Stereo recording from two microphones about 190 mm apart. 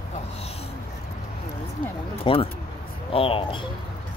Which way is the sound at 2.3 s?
25° left (ahead or behind).